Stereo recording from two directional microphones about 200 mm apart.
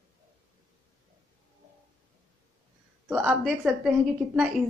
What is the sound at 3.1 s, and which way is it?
A woman's voice, 5° right (ahead or behind).